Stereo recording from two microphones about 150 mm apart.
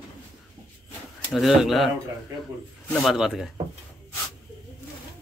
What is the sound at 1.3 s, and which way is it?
Speech, centre (ahead or behind).